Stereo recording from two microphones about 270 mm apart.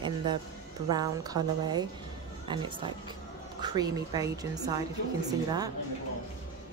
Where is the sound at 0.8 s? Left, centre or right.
Centre.